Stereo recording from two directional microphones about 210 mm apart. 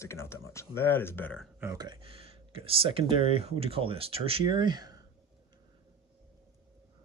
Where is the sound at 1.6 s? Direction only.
15° right (ahead or behind).